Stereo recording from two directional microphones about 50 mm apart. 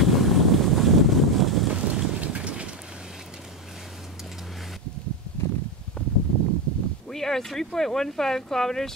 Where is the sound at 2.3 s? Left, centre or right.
Right.